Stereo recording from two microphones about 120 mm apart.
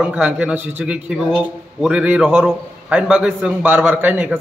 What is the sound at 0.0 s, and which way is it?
A man's voice, 10° right (ahead or behind).